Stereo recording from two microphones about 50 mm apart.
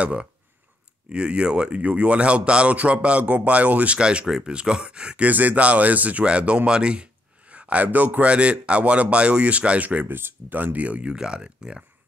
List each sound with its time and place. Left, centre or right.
0.0 s a man's voice: right
5.2 s a man's voice: right
10.0 s speech: right
11.1 s speech: centre